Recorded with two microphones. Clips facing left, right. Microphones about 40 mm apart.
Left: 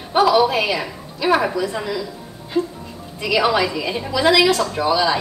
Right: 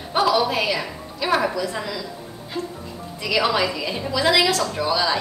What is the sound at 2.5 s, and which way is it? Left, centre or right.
Speech, left.